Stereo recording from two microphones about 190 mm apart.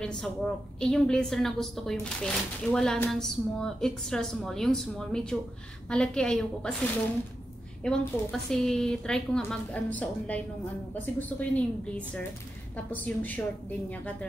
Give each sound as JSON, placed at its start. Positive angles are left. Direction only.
{"t": 0.0, "sound": "a woman's voice", "side_deg": 5}
{"t": 12.9, "sound": "a woman's voice", "side_deg": 10}